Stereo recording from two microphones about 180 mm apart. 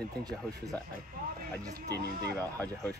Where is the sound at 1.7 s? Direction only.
65° right (ahead or behind).